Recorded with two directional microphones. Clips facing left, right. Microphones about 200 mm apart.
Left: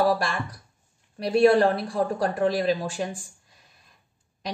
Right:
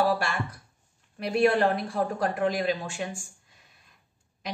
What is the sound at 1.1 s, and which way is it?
A woman's voice, 35° left (ahead or behind).